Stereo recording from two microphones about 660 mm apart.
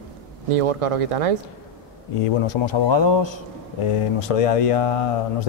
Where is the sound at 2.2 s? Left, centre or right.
Left.